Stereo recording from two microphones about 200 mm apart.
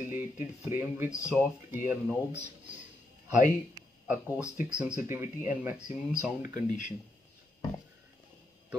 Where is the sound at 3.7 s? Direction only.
10° right (ahead or behind).